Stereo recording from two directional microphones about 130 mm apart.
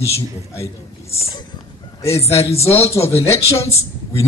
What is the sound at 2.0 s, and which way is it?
Speech, 50° left (ahead or behind).